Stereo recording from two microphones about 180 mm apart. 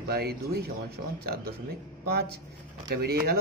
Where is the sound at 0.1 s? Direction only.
60° right (ahead or behind).